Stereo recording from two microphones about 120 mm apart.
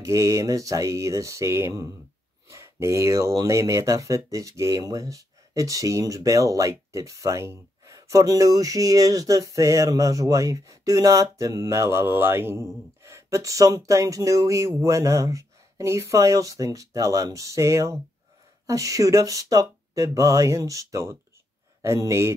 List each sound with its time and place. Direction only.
0.0 s speech: 25° right (ahead or behind)